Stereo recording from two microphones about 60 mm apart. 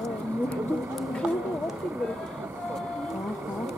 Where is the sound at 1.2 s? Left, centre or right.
Centre.